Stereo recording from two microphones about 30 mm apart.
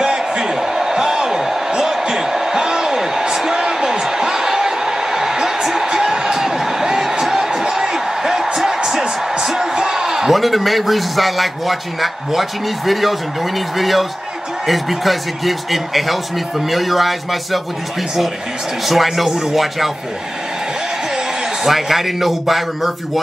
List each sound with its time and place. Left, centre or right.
0.0 s a sound: centre
8.5 s music: centre
9.4 s a sound: centre
10.3 s a man's voice: centre
18.9 s a man's voice: centre
21.6 s a man's voice: centre